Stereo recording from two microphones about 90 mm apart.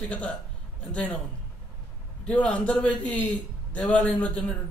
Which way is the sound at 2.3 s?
15° left (ahead or behind).